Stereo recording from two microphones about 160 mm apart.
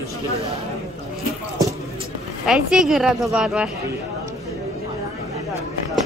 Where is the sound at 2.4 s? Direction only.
5° right (ahead or behind).